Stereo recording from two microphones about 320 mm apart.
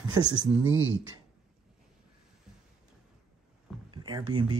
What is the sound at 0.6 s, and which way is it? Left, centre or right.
Speech, right.